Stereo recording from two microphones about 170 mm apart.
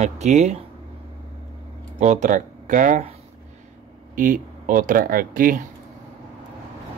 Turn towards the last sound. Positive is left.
turn(degrees=-55)  # may be behind; listen again after turning